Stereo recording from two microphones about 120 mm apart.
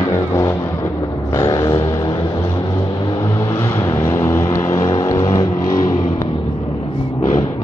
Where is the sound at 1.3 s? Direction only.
30° left (ahead or behind).